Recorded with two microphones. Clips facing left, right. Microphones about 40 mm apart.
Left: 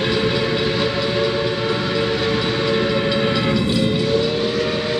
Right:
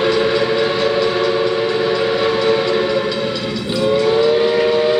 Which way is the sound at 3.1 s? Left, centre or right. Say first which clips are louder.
Left 2 dB; centre.